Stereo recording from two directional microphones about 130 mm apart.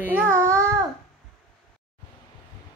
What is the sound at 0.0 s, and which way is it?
Babbling, 15° right (ahead or behind).